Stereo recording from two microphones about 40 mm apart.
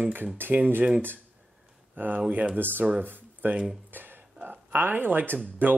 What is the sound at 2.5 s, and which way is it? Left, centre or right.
Speech, right.